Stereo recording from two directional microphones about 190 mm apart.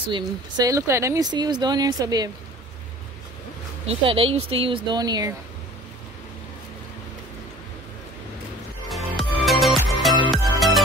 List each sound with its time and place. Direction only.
0.1 s speech: 20° right (ahead or behind)
3.8 s speech: 30° right (ahead or behind)
8.8 s music: centre (ahead or behind)